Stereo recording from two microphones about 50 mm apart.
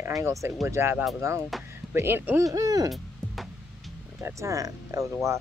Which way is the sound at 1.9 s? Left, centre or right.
Right.